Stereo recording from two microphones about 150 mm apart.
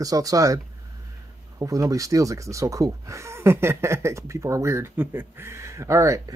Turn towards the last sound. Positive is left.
turn(degrees=-20)  # may be behind; listen again after turning